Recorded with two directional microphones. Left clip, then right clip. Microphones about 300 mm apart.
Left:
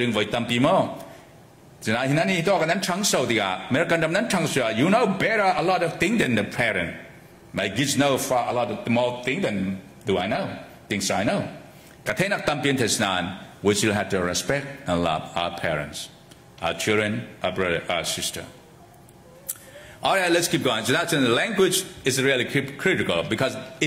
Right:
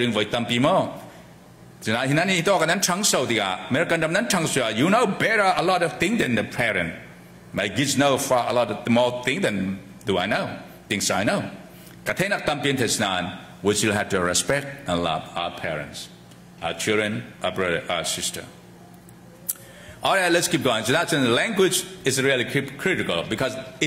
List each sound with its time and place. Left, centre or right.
0.0 s a man's voice: centre
1.9 s a man's voice: centre
14.9 s a man's voice: centre
20.0 s a man's voice: centre
22.8 s a man's voice: centre